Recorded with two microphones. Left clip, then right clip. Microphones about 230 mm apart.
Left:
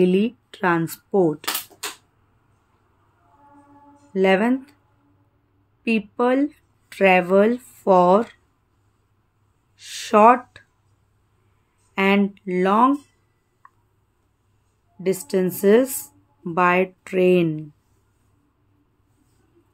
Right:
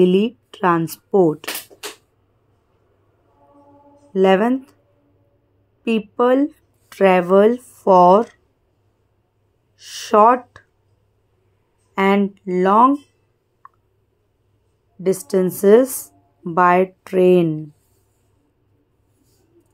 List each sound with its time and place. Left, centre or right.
0.0 s speech: centre
4.1 s speech: centre
5.9 s speech: centre
9.8 s speech: centre
11.9 s speech: centre
15.0 s speech: centre